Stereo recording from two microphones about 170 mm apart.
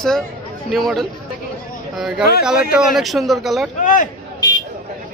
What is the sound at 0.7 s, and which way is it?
Speech, centre (ahead or behind).